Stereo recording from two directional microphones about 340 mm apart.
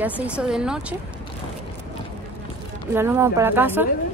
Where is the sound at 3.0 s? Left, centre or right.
Centre.